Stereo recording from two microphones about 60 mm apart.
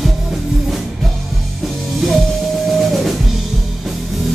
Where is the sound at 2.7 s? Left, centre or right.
Centre.